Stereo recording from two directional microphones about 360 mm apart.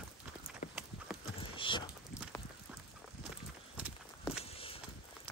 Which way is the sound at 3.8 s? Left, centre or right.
Centre.